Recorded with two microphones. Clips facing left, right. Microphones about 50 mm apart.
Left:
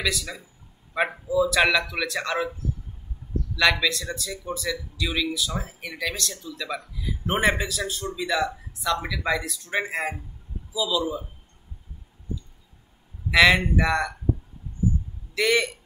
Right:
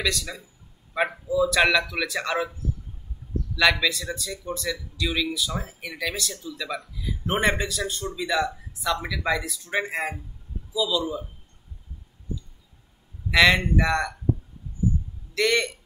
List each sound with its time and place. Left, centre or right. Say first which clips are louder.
0.0 s a man's voice: even; centre
3.5 s a man's voice: even; centre
13.3 s a man's voice: left 1 dB; centre
15.3 s speech: left 1 dB; centre